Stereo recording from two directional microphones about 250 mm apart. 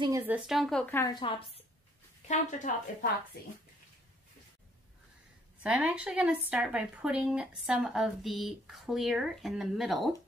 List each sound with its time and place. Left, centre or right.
0.0 s speech: centre
0.4 s a woman's voice: centre
1.0 s speech: left
5.6 s a woman's voice: centre